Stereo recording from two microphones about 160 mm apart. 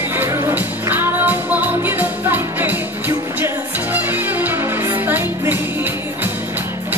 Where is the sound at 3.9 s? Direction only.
10° right (ahead or behind).